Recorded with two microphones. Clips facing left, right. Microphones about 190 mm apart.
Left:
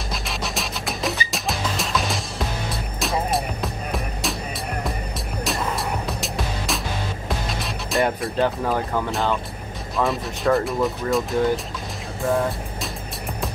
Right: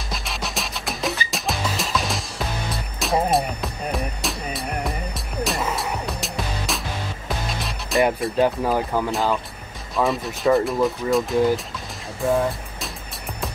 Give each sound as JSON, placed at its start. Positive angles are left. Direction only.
{"t": 0.1, "sound": "music", "side_deg": 0}
{"t": 5.4, "sound": "music", "side_deg": 0}
{"t": 9.9, "sound": "speech", "side_deg": 0}
{"t": 12.2, "sound": "music", "side_deg": 0}